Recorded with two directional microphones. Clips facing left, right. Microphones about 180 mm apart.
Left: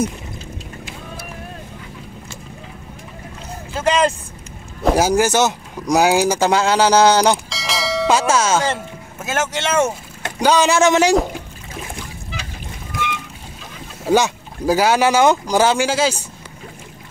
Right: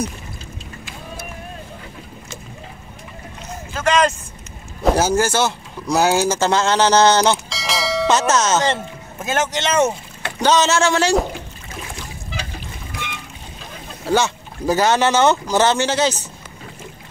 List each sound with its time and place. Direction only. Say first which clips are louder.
3.7 s speech: even; 30° left (ahead or behind)
4.9 s speech: left 4 dB; 15° left (ahead or behind)
7.4 s speech: even; centre (ahead or behind); by 11.1 s 15° left (ahead or behind)
14.0 s speech: left 2 dB; 15° left (ahead or behind)